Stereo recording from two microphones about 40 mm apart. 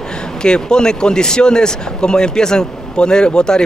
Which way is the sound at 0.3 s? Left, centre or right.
Centre.